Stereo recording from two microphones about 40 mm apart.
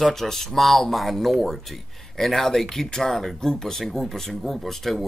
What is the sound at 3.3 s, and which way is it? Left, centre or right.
Speech, centre.